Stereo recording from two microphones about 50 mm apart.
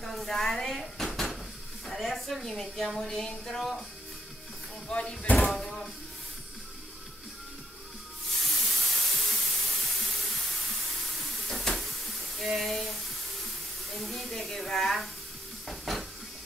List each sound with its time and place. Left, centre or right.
0.0 s dishes: centre
1.9 s speech: centre
4.8 s speech: centre
5.4 s a sound: centre
8.3 s spray: centre
13.9 s speech: centre
15.6 s stir: centre